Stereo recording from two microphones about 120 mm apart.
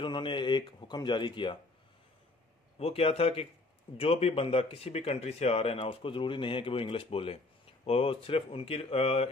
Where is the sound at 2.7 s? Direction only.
55° left (ahead or behind).